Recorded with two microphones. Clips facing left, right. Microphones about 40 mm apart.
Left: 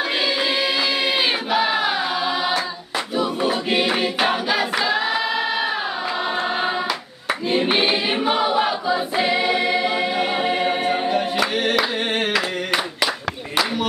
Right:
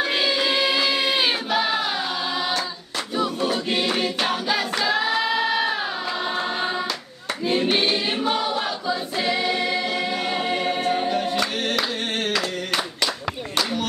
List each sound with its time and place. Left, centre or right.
0.0 s music: centre
3.2 s choir: centre